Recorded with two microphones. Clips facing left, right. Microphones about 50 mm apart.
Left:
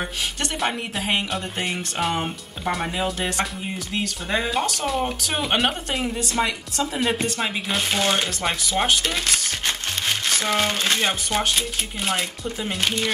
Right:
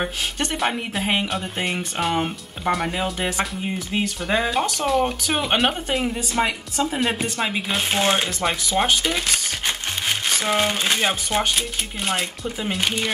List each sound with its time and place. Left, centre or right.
0.6 s speech: centre
6.4 s a woman's voice: right
7.0 s speech: centre
8.5 s speech: centre